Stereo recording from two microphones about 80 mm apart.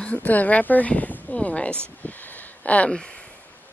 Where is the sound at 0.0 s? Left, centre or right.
Centre.